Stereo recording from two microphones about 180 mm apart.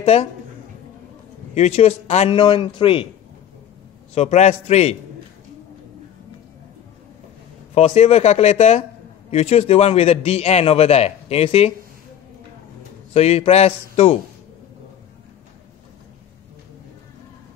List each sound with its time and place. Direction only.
0.0 s speech: 35° left (ahead or behind)
1.5 s a man's voice: 35° left (ahead or behind)
4.1 s a man's voice: 35° left (ahead or behind)
7.7 s a man's voice: 35° left (ahead or behind)
13.1 s a man's voice: 35° left (ahead or behind)